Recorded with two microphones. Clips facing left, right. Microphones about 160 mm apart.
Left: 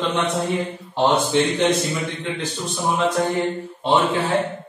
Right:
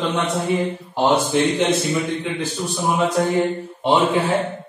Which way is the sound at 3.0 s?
10° right (ahead or behind).